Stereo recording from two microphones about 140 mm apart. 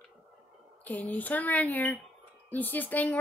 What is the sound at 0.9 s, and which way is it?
Speech, 10° left (ahead or behind).